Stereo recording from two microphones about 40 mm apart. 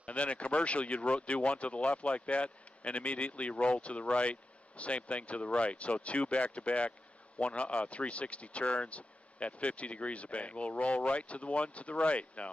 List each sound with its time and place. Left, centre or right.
0.0 s speech: left